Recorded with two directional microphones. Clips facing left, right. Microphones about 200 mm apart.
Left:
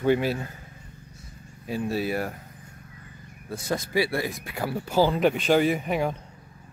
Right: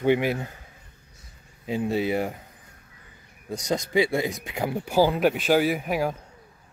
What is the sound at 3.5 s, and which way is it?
Speech, 15° right (ahead or behind).